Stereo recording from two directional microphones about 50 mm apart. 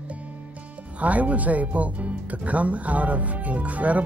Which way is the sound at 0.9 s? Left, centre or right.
Right.